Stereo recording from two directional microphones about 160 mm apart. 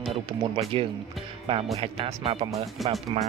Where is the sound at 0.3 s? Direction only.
35° right (ahead or behind).